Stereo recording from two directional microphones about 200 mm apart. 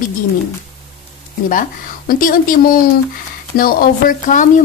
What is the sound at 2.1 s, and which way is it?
Speech, 45° left (ahead or behind).